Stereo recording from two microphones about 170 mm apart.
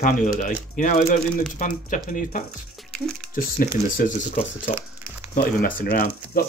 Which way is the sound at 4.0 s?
45° left (ahead or behind).